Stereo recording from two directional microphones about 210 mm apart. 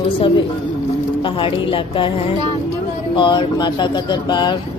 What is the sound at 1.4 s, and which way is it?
A woman's voice, 25° left (ahead or behind).